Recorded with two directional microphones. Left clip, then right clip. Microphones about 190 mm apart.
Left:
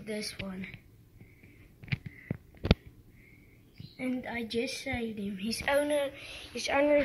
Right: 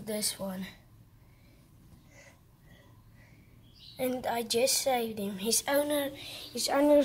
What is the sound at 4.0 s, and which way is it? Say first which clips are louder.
A woman's voice: right 5 dB; 45° right (ahead or behind).